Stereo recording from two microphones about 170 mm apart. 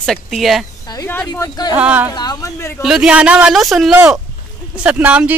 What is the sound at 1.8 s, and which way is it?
Speech, 10° right (ahead or behind).